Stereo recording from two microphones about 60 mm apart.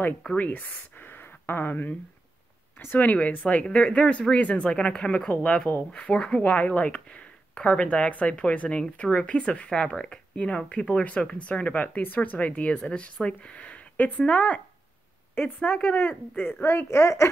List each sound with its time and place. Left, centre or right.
0.4 s speech: left
16.6 s a woman's voice: left